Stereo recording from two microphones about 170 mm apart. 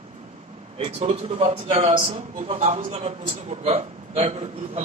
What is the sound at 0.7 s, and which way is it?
A man's voice, 35° right (ahead or behind).